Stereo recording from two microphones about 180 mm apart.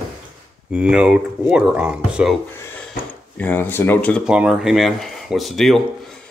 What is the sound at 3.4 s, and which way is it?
Speech, 10° left (ahead or behind).